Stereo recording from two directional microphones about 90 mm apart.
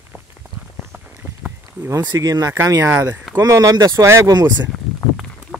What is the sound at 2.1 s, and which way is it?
Speech, 45° right (ahead or behind).